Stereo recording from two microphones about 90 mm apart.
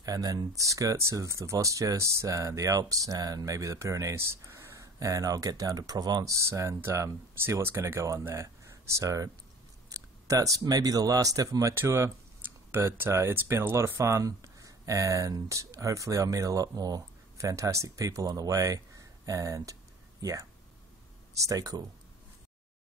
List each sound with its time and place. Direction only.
0.0 s speech: 45° right (ahead or behind)
9.8 s a sound: 40° right (ahead or behind)
10.6 s speech: 45° right (ahead or behind)
11.7 s speech: 30° right (ahead or behind)